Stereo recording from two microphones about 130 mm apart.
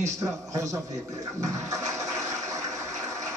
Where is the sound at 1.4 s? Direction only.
25° right (ahead or behind).